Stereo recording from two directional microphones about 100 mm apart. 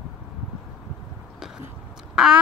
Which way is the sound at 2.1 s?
5° right (ahead or behind).